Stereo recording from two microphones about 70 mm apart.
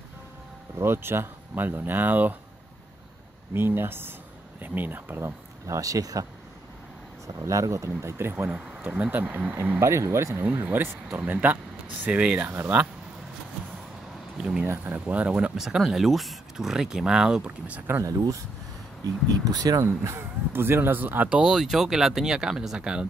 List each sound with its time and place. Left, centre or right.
0.7 s speech: right
3.5 s speech: right
5.7 s speech: right
7.4 s speech: right
9.8 s speech: right
10.4 s speech: right
14.4 s speech: centre
15.0 s speech: right
15.5 s speech: centre
18.0 s speech: right
19.4 s speech: right
19.8 s speech: right
21.4 s speech: centre